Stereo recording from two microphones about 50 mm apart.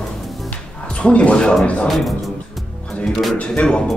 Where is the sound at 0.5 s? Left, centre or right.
Left.